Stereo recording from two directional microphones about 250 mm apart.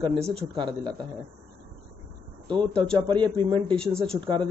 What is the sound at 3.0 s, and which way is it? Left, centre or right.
Speech, centre.